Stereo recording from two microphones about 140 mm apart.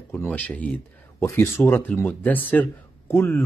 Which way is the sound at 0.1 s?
15° left (ahead or behind).